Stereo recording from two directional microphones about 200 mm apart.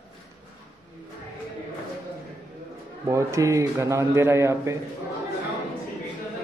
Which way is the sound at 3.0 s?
15° right (ahead or behind).